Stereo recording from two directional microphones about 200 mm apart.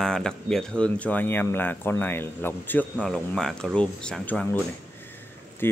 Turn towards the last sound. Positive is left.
turn(degrees=10)  # may be behind; listen again after turning